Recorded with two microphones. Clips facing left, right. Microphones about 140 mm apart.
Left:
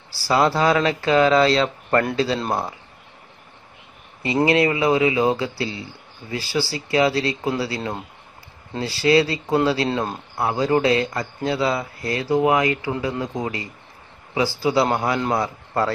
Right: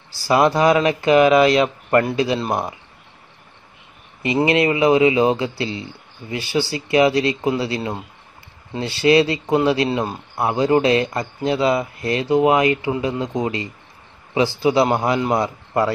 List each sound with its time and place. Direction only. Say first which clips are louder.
0.1 s a man's voice: right 3 dB; 20° right (ahead or behind)
4.5 s a man's voice: right 3 dB; 20° right (ahead or behind)
9.8 s speech: right 2 dB; 5° right (ahead or behind)
10.3 s a man's voice: right 3 dB; 20° right (ahead or behind)